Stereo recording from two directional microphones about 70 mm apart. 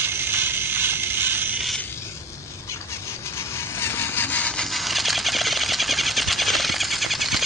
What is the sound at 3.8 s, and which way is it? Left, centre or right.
Vehicle, left.